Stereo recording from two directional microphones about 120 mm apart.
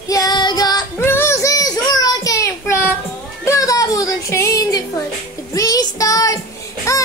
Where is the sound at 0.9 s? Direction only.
20° left (ahead or behind).